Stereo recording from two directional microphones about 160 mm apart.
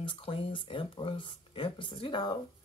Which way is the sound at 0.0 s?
30° left (ahead or behind).